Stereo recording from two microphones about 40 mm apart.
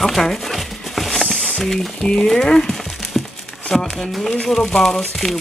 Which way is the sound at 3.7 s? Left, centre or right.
Centre.